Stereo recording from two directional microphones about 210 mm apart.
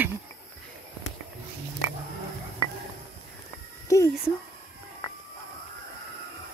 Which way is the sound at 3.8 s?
15° left (ahead or behind).